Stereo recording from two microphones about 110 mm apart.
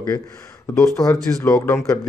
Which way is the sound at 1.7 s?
30° left (ahead or behind).